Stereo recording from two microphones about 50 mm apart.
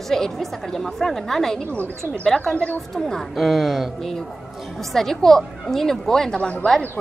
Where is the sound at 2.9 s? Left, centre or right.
Centre.